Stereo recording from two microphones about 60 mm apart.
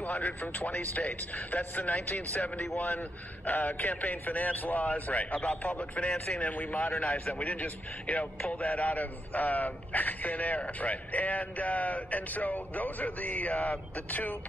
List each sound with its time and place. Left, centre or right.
0.0 s a man's voice: left